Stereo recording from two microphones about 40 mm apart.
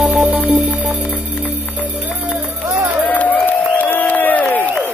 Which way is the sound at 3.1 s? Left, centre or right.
Left.